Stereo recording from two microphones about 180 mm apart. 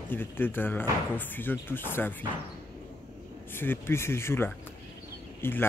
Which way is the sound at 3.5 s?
10° left (ahead or behind).